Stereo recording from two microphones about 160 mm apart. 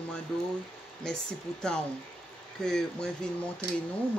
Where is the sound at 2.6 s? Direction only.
5° left (ahead or behind).